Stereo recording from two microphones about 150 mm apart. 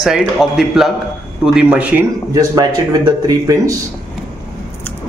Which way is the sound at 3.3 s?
20° right (ahead or behind).